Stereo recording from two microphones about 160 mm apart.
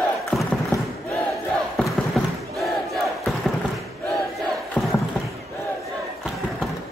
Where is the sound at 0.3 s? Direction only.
Centre (ahead or behind).